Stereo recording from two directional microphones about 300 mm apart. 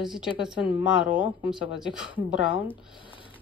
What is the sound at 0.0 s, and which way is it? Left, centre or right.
Speech, centre.